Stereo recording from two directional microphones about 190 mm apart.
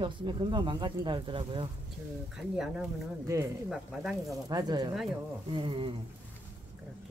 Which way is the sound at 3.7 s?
Centre (ahead or behind).